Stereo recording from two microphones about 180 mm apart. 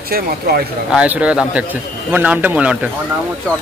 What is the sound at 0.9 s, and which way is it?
A man's voice, 5° right (ahead or behind).